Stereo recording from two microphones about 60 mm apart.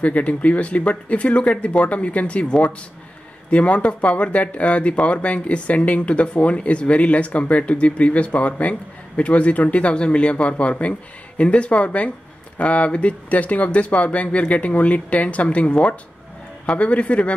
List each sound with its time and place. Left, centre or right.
0.0 s speech: left